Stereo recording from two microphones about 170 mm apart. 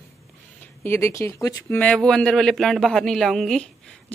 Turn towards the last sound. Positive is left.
turn(degrees=5)  # may be behind; listen again after turning